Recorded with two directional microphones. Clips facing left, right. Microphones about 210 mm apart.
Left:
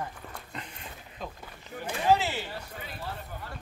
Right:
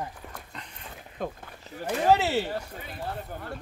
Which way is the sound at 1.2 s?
55° right (ahead or behind).